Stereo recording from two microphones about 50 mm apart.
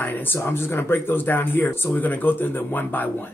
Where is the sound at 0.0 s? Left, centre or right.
Left.